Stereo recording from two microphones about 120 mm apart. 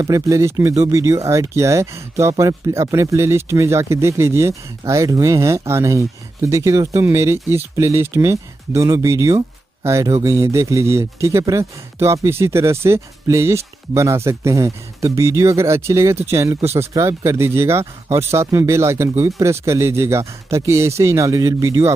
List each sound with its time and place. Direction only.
0.0 s speech: 25° right (ahead or behind)